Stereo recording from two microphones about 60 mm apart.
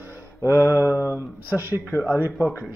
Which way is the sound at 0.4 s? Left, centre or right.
Left.